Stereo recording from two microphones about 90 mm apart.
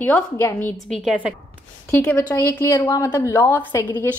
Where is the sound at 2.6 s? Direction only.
30° left (ahead or behind).